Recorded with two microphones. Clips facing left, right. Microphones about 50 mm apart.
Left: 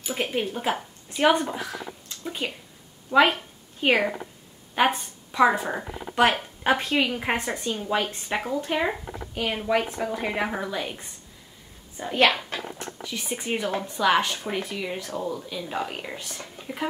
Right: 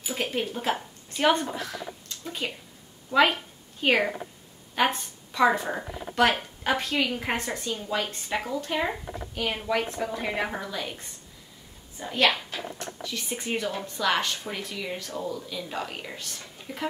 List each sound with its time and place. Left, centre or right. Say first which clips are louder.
0.1 s a woman's voice: left 2 dB; centre
12.2 s speech: left 3 dB; left
12.7 s a woman's voice: left 1 dB; centre